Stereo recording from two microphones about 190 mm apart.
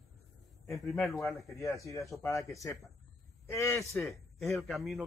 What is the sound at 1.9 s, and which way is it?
Speech, 15° left (ahead or behind).